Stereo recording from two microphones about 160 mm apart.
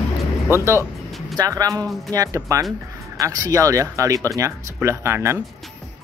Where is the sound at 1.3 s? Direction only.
20° right (ahead or behind).